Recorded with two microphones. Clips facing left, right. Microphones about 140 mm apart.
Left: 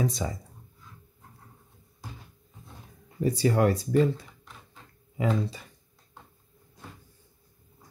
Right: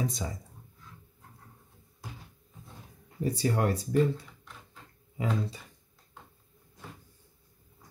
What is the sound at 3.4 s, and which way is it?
Speech, 90° left.